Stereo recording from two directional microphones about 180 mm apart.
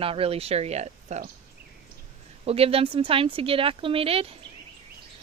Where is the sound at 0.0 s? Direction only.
30° right (ahead or behind).